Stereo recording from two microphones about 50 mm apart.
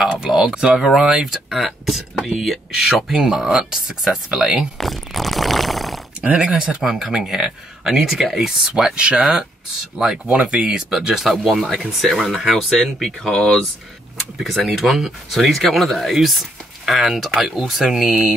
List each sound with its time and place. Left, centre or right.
0.0 s speech: centre
4.7 s a sound: centre
6.2 s speech: centre
10.3 s speech: centre
12.7 s speech: centre
18.0 s speech: right